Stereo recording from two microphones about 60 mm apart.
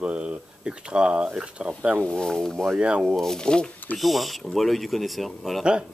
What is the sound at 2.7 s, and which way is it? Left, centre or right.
Speech, centre.